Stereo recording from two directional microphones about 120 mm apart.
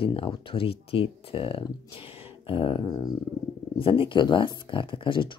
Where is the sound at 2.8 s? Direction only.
35° left (ahead or behind).